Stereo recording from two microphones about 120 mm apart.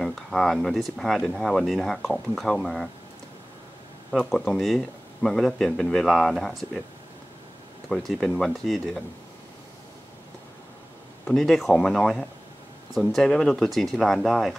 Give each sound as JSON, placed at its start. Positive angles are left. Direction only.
{"t": 0.0, "sound": "speech", "side_deg": 5}
{"t": 4.2, "sound": "speech", "side_deg": 5}
{"t": 7.9, "sound": "speech", "side_deg": 5}
{"t": 11.2, "sound": "speech", "side_deg": 5}